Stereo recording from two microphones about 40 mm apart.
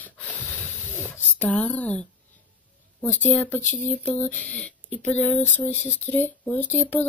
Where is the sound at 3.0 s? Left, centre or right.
Left.